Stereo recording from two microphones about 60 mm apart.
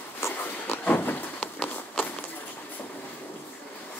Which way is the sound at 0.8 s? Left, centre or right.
Left.